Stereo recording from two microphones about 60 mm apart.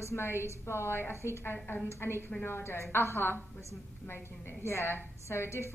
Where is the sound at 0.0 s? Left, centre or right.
Left.